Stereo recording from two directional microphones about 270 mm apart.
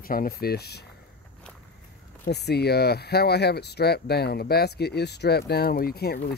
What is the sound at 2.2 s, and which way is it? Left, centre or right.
Speech, left.